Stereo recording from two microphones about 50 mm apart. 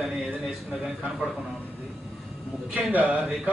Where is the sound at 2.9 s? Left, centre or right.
Right.